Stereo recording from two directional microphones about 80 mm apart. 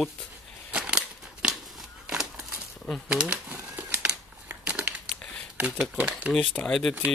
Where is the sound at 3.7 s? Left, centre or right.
Right.